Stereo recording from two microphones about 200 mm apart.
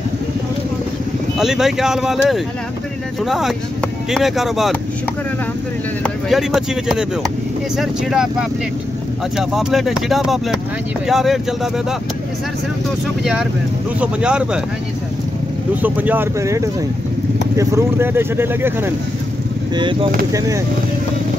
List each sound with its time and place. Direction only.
1.4 s speech: centre (ahead or behind)
6.0 s speech: centre (ahead or behind)
13.2 s speech: centre (ahead or behind)
15.7 s speech: 10° right (ahead or behind)
19.7 s speech: 25° right (ahead or behind)